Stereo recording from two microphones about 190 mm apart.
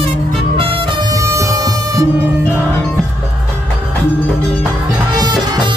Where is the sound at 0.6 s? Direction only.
25° right (ahead or behind).